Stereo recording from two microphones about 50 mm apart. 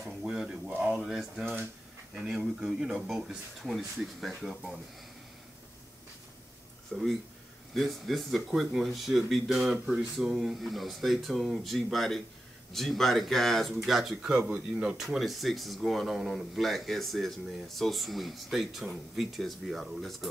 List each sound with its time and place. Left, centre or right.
0.2 s speech: centre
3.7 s speech: centre
6.9 s speech: centre
15.0 s speech: centre